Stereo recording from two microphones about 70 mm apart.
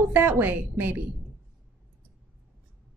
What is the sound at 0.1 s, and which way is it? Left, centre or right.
Speech, right.